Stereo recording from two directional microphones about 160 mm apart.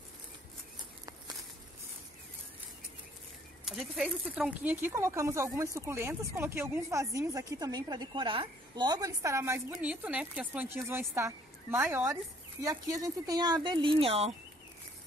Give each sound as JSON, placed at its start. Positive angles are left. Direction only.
{"t": 3.6, "sound": "speech", "side_deg": 0}